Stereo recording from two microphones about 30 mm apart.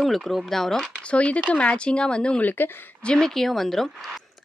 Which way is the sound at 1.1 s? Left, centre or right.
Left.